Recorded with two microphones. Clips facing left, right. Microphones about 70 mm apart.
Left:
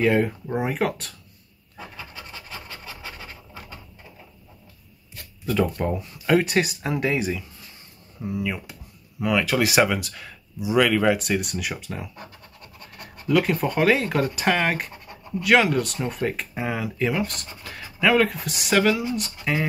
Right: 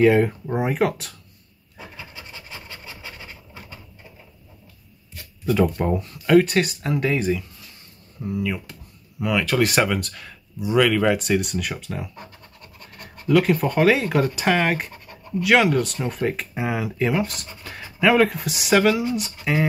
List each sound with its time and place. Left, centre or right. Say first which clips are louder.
0.0 s speech: right 4 dB; centre
5.5 s speech: right 3 dB; centre
5.9 s speech: right 5 dB; centre
13.3 s speech: right 3 dB; centre
17.6 s a sound: right 2 dB; centre
17.9 s speech: right 2 dB; centre